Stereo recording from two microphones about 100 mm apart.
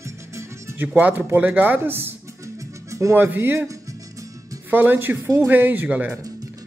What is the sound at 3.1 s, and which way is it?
Speech, 20° right (ahead or behind).